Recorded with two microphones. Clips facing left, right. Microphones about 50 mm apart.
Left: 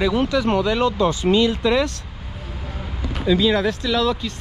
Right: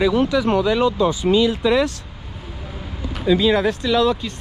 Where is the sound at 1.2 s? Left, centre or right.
Left.